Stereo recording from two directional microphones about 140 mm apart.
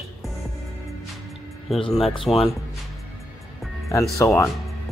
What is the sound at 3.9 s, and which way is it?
Speech, 20° left (ahead or behind).